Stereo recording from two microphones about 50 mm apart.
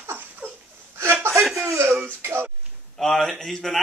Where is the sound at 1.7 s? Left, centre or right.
Right.